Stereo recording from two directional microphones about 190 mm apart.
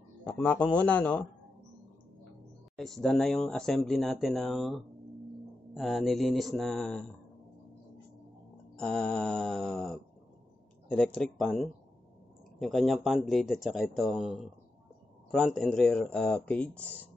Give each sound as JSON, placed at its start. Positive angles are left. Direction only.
{"t": 0.2, "sound": "a man's voice", "side_deg": 5}
{"t": 2.8, "sound": "speech", "side_deg": 0}
{"t": 8.7, "sound": "speech", "side_deg": 5}
{"t": 11.1, "sound": "speech", "side_deg": 0}